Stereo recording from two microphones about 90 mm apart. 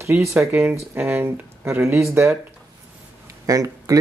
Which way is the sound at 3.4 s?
40° right (ahead or behind).